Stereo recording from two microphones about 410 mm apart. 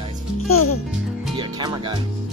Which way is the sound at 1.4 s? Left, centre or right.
Centre.